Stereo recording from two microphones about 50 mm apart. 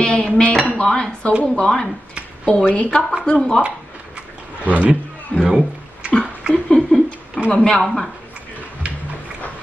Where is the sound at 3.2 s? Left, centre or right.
Centre.